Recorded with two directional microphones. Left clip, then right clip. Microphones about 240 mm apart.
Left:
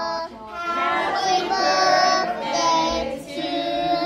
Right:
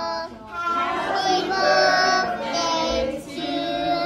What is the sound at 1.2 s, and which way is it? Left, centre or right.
Child singing, left.